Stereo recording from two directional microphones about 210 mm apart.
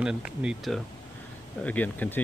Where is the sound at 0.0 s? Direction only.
5° right (ahead or behind).